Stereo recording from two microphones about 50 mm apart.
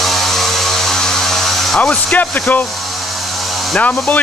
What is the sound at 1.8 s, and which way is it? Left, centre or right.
Speech, left.